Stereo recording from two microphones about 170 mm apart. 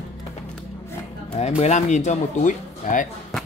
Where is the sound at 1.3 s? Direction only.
40° left (ahead or behind).